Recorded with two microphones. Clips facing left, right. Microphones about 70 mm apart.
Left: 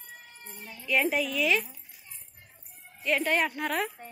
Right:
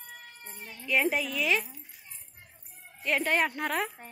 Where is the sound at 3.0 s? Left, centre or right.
Right.